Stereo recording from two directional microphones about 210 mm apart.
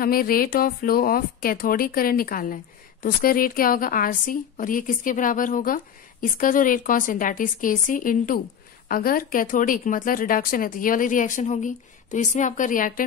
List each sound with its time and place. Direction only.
0.0 s speech: 45° left (ahead or behind)